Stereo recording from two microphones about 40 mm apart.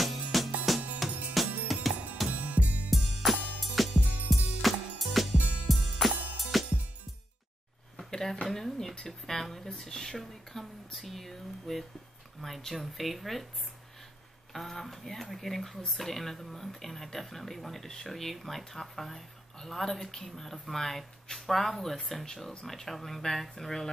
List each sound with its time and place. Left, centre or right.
0.0 s music: centre
2.3 s music: right
2.9 s music: centre
8.1 s a sound: centre
8.9 s speech: centre
14.5 s speech: centre